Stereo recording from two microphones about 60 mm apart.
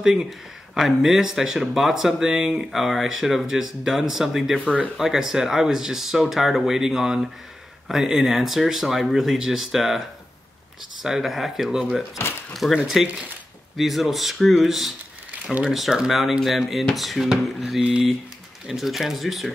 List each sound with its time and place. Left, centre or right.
0.0 s speech: centre
15.3 s crumpling: right
15.6 s speech: centre